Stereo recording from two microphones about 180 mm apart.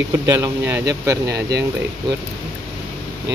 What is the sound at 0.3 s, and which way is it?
Speech, 15° right (ahead or behind).